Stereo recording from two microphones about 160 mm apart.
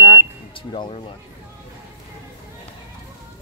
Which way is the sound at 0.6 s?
30° left (ahead or behind).